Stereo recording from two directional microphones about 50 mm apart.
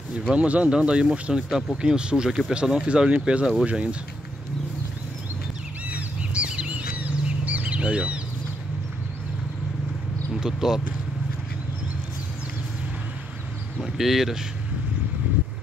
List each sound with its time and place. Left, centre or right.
0.3 s speech: right
5.9 s bird: right
10.3 s speech: centre
13.7 s speech: centre